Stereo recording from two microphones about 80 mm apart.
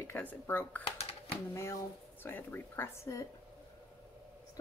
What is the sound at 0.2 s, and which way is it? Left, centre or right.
Speech, left.